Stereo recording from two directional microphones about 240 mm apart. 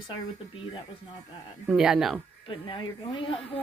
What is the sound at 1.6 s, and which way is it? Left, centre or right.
Speech, centre.